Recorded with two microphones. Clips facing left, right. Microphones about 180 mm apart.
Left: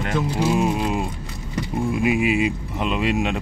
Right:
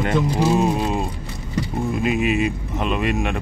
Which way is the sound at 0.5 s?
35° right (ahead or behind).